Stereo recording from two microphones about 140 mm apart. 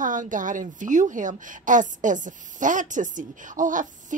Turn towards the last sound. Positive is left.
turn(degrees=-65)  # may be behind; listen again after turning